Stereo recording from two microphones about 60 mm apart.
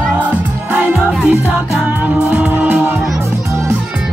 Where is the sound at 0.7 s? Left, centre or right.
Right.